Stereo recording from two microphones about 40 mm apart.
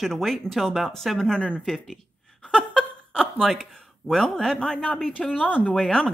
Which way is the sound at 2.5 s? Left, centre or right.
Centre.